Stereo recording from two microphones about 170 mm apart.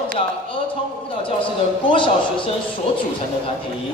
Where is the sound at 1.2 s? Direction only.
30° left (ahead or behind).